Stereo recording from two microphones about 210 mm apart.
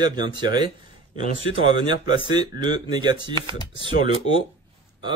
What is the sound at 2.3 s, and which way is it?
A man's voice, 20° right (ahead or behind).